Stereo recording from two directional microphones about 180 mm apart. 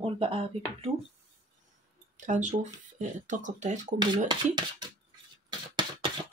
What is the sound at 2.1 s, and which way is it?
Speech, 45° right (ahead or behind).